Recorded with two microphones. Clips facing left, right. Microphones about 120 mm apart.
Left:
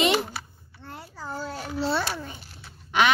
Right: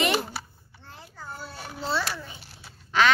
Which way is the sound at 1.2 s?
90° left.